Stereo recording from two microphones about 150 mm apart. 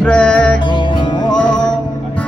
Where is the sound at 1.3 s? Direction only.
5° left (ahead or behind).